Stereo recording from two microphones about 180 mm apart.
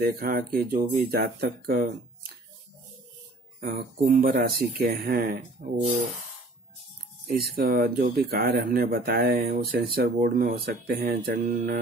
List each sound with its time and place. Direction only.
0.0 s speech: 55° right (ahead or behind)
3.6 s speech: 55° right (ahead or behind)
7.2 s speech: 55° right (ahead or behind)